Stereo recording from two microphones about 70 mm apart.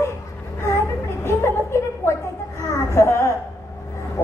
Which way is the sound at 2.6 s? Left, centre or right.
Left.